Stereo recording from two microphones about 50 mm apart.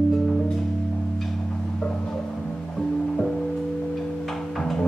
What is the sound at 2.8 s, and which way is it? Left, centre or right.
Music, centre.